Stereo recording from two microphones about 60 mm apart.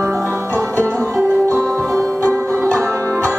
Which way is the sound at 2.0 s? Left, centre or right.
Right.